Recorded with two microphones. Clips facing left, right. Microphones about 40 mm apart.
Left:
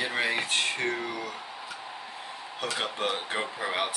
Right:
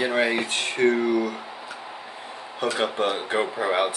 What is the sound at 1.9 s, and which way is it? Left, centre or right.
Tick-tock, centre.